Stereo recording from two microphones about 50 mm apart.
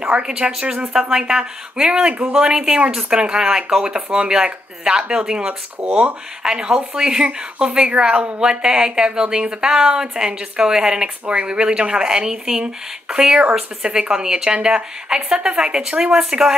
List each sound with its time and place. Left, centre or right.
0.0 s speech: centre
5.8 s speech: right
6.4 s speech: centre